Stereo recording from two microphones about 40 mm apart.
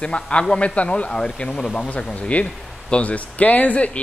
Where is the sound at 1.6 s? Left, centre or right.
Left.